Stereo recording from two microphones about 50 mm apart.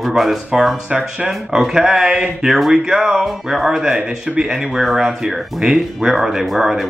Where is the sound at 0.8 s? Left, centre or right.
Centre.